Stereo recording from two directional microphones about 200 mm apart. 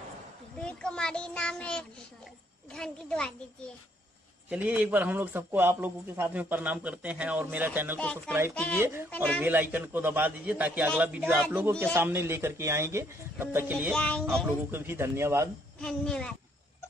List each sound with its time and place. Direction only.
0.6 s child singing: 5° left (ahead or behind)
2.7 s a child's voice: 5° left (ahead or behind)
4.5 s a man's voice: 5° right (ahead or behind)
8.5 s a child's voice: 5° left (ahead or behind)
9.4 s a man's voice: 10° right (ahead or behind)
13.9 s a child's voice: 5° left (ahead or behind)
14.7 s a man's voice: 10° right (ahead or behind)
15.8 s a child's voice: 5° left (ahead or behind)